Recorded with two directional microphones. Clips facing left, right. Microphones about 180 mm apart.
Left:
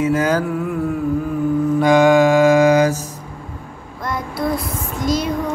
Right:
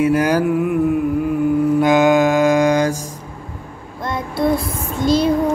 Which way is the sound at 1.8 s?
Centre (ahead or behind).